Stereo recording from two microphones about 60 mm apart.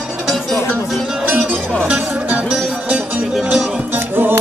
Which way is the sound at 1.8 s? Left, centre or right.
Right.